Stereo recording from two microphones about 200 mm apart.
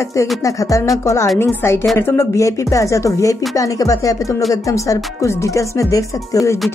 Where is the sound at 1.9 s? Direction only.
15° left (ahead or behind).